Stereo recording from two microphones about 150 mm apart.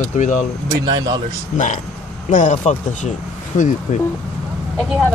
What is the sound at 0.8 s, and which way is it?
Speech, 30° right (ahead or behind).